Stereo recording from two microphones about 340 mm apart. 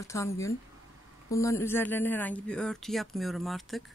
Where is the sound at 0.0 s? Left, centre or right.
Centre.